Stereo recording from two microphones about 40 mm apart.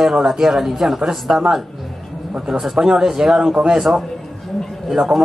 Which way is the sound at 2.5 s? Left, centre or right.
Centre.